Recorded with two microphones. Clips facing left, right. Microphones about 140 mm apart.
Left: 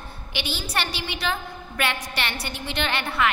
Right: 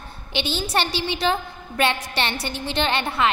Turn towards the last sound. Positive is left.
turn(degrees=-25)  # may be behind; listen again after turning